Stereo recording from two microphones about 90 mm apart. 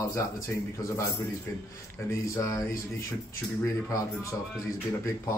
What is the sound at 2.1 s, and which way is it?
Speech, 35° left (ahead or behind).